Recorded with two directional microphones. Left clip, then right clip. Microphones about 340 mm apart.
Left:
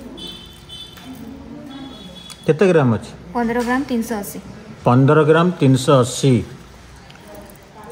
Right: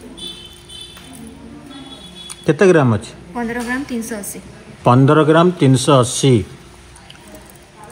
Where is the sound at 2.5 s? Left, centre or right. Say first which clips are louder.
Right 2 dB; centre.